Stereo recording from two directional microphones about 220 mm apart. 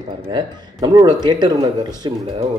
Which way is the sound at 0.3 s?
20° right (ahead or behind).